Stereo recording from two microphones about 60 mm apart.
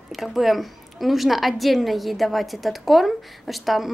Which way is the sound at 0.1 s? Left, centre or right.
Centre.